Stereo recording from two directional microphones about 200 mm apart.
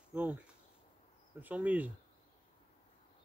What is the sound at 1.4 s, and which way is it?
Speech, 10° right (ahead or behind).